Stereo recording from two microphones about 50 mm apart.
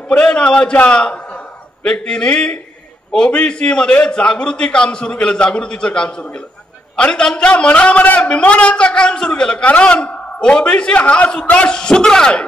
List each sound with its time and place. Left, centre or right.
0.1 s a man's voice: left
8.2 s a man's voice: left